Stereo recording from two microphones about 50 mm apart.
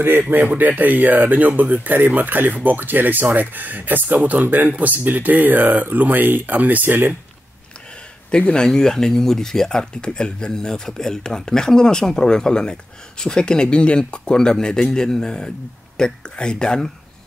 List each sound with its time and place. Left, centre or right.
0.3 s speech: right
8.3 s speech: centre